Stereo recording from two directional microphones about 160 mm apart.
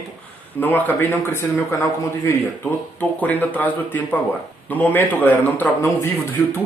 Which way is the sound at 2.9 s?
10° left (ahead or behind).